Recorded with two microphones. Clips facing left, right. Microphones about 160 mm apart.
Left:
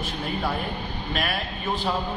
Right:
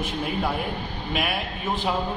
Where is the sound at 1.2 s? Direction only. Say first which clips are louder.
Right 2 dB; 15° right (ahead or behind).